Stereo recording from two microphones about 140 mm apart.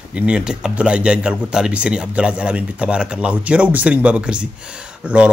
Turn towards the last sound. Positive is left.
turn(degrees=-10)  # may be behind; listen again after turning